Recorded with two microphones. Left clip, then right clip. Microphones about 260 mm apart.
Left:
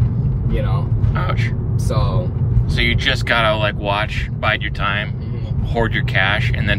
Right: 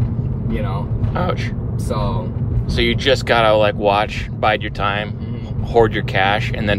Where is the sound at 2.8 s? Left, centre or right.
Centre.